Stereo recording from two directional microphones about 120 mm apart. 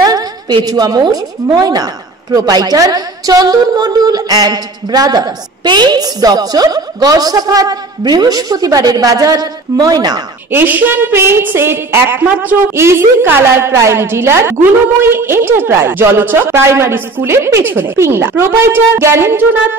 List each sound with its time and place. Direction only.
0.0 s a sound: 30° right (ahead or behind)
0.7 s a woman's voice: 35° right (ahead or behind)
10.5 s a woman's voice: 15° right (ahead or behind)